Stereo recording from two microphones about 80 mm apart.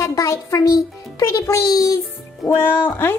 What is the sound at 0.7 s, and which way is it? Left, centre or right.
A child's voice, left.